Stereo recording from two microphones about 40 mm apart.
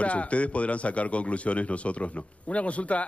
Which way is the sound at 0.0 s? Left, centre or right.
Left.